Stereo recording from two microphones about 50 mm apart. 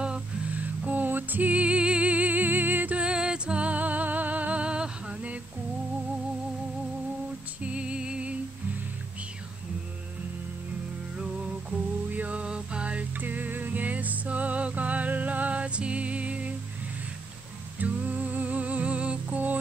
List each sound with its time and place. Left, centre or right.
0.5 s music: right
1.5 s music: right
3.0 s music: centre
7.6 s music: right
12.1 s music: right
13.2 s music: right
17.7 s music: right